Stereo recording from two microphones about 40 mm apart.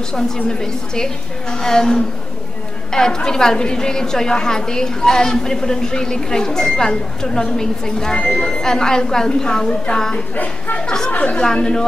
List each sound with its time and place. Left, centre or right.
0.5 s a woman's voice: centre
9.9 s a woman's voice: left
10.8 s a woman's voice: centre
11.1 s a woman's voice: left
11.3 s speech: left